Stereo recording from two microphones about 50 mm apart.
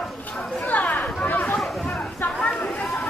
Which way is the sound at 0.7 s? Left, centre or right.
Left.